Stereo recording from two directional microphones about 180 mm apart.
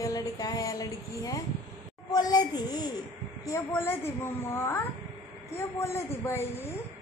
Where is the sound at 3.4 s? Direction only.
15° left (ahead or behind).